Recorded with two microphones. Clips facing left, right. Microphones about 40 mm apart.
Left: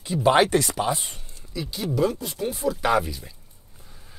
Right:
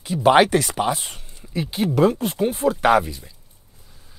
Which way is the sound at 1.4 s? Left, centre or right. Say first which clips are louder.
Right 7 dB; right.